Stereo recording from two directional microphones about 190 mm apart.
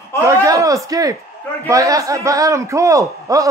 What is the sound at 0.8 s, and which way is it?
A man's voice, 20° right (ahead or behind).